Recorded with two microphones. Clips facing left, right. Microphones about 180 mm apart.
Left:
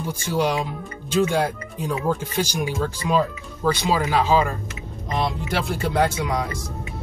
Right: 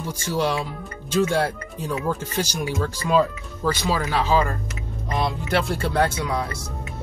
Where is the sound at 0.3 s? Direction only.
15° left (ahead or behind).